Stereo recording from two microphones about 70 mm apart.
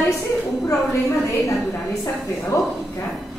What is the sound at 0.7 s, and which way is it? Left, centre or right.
Speech, left.